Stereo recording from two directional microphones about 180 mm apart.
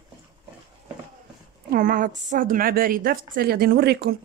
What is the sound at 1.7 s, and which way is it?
A woman's voice, 50° right (ahead or behind).